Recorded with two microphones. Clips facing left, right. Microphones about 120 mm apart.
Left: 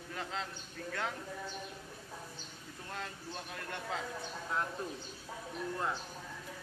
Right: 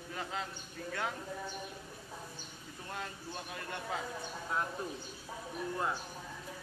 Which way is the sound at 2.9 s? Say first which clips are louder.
Right 1 dB; 5° right (ahead or behind).